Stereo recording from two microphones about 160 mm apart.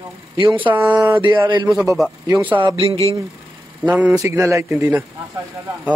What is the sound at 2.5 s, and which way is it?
Speech, 35° right (ahead or behind).